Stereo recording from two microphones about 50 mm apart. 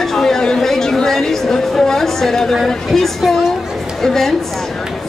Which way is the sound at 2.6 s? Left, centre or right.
Centre.